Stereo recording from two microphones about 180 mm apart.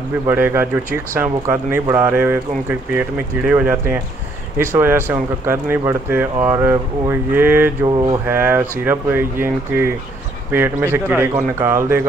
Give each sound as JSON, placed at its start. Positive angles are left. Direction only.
{"t": 0.3, "sound": "speech", "side_deg": -10}
{"t": 7.8, "sound": "a sound", "side_deg": -20}
{"t": 8.3, "sound": "speech", "side_deg": -10}